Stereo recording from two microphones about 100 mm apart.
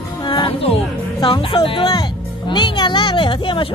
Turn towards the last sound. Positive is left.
turn(degrees=60)  # may be behind; listen again after turning